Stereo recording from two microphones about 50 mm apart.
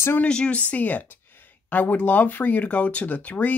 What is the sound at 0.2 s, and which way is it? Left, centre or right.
Speech, left.